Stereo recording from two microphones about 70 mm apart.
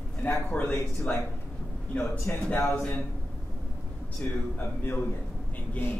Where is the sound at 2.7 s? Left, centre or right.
Centre.